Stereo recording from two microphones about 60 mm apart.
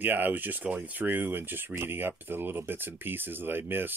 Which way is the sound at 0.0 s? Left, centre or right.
Right.